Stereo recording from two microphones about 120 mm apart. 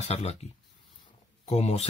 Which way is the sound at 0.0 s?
65° left (ahead or behind).